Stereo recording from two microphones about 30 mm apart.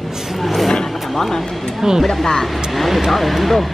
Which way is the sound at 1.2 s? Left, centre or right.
Centre.